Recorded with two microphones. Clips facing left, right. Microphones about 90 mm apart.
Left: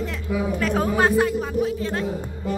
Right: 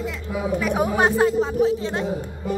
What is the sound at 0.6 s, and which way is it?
Speech, 15° right (ahead or behind).